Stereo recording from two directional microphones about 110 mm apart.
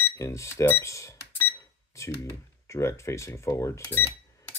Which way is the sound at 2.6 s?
25° left (ahead or behind).